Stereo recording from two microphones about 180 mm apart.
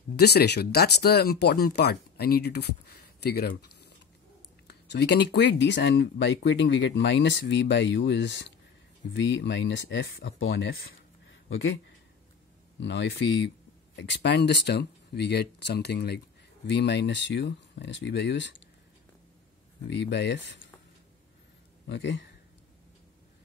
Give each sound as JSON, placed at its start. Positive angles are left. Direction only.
{"t": 0.1, "sound": "speech", "side_deg": 65}
{"t": 4.6, "sound": "speech", "side_deg": 70}
{"t": 11.5, "sound": "speech", "side_deg": 90}
{"t": 12.8, "sound": "speech", "side_deg": 80}
{"t": 19.9, "sound": "speech", "side_deg": 75}
{"t": 21.8, "sound": "speech", "side_deg": 80}